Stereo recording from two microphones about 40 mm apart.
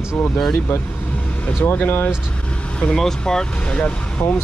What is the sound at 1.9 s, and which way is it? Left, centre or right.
Speech, left.